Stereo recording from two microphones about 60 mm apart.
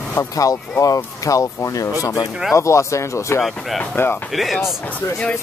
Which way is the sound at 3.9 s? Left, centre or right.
Left.